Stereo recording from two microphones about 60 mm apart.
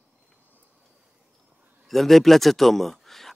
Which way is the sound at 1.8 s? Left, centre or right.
Centre.